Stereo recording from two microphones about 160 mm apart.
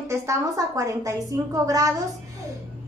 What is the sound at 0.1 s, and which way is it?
A woman's voice, 20° right (ahead or behind).